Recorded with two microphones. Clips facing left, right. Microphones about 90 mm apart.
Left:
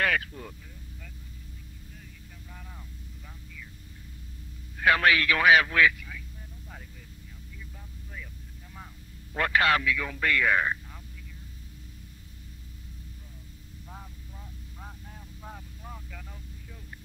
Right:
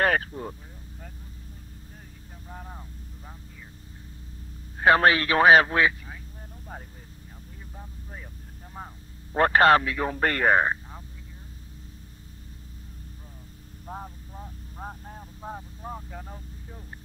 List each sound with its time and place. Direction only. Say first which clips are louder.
0.0 s speech: right 4 dB; 35° right (ahead or behind)
2.5 s vehicle: right 8 dB; 40° right (ahead or behind)
4.7 s speech: right 4 dB; 35° right (ahead or behind)
7.7 s vehicle: right 4 dB; 35° right (ahead or behind)
8.7 s a man's voice: right 7 dB; 40° right (ahead or behind)
13.8 s vehicle: right 9 dB; 40° right (ahead or behind)